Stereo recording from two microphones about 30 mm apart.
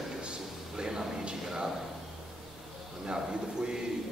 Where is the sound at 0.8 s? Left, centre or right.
Centre.